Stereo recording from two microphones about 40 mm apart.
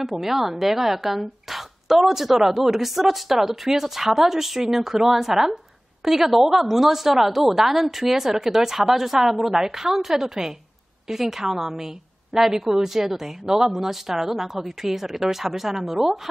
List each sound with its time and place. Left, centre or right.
0.2 s a woman's voice: centre